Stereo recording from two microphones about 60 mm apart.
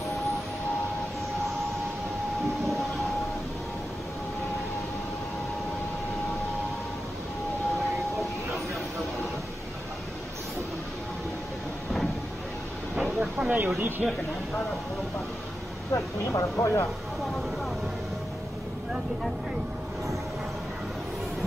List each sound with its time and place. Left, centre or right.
12.9 s vehicle: centre
13.7 s speech: right
15.9 s speech: left